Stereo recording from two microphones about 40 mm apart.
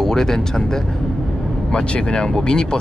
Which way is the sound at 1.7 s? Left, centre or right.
Left.